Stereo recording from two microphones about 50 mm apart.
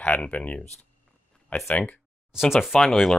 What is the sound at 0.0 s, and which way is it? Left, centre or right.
Speech, left.